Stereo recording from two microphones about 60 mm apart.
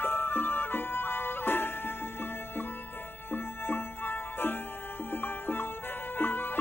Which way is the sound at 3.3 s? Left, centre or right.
Left.